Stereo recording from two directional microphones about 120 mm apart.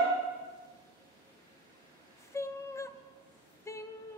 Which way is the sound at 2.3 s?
25° left (ahead or behind).